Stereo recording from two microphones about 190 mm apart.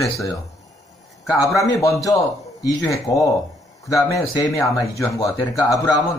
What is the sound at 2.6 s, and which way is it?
Speech, 15° left (ahead or behind).